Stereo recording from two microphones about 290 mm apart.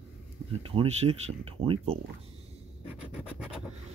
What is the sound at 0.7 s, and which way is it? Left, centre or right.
Speech, centre.